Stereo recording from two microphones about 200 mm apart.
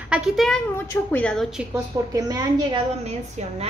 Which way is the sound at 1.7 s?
15° right (ahead or behind).